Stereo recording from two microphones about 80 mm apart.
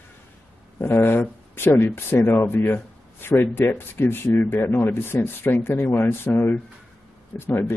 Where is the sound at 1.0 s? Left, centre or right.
Left.